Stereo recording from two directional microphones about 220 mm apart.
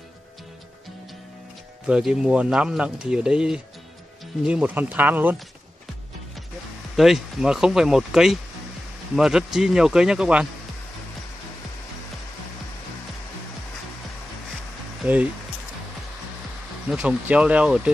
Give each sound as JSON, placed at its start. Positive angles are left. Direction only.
{"t": 1.9, "sound": "speech", "side_deg": -5}
{"t": 7.0, "sound": "speech", "side_deg": 0}
{"t": 16.8, "sound": "speech", "side_deg": -5}